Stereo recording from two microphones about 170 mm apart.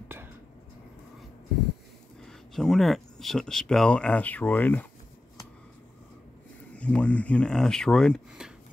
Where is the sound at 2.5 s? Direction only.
Centre (ahead or behind).